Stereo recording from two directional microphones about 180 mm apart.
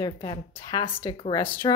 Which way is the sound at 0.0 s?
25° left (ahead or behind).